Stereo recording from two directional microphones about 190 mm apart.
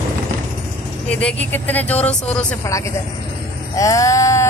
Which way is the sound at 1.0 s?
5° left (ahead or behind).